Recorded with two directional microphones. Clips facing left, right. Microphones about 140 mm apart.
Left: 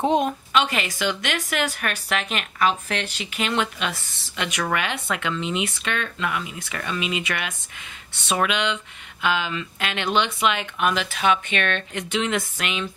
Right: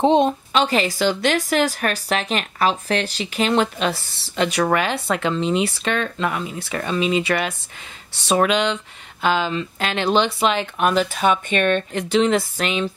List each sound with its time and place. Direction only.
0.0 s a woman's voice: 25° right (ahead or behind)